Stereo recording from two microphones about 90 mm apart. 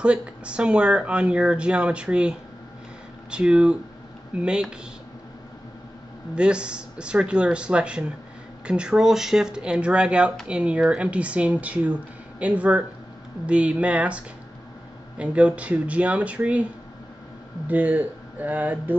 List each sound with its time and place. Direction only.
0.0 s speech: 10° right (ahead or behind)
6.3 s speech: 10° right (ahead or behind)
17.6 s speech: 15° right (ahead or behind)